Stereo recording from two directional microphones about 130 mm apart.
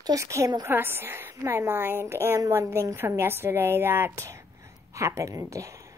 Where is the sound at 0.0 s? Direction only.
25° right (ahead or behind).